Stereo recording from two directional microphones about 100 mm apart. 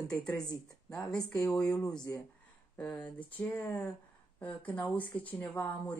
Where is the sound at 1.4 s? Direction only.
10° left (ahead or behind).